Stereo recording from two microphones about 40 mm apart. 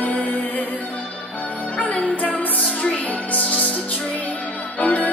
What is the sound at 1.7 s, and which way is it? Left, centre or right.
Music, left.